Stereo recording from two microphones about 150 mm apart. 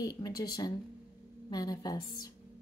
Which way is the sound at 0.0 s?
25° left (ahead or behind).